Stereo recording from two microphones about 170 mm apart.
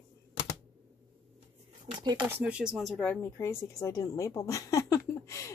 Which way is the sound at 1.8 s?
25° right (ahead or behind).